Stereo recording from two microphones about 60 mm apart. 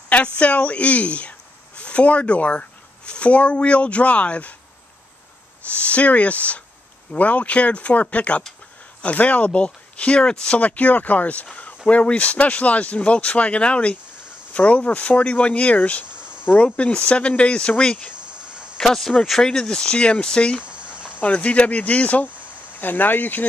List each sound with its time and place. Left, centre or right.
0.4 s speech: left
5.7 s speech: left
16.1 s cricket: centre
16.4 s speech: left
18.3 s a sound: centre
18.8 s speech: centre
20.6 s cricket: centre
21.2 s speech: left